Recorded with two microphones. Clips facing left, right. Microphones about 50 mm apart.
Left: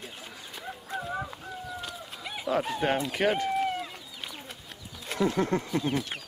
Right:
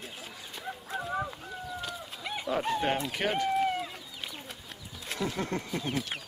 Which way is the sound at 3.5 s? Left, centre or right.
Centre.